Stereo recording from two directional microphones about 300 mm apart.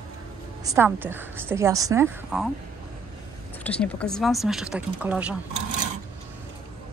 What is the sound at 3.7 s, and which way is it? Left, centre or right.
Speech, centre.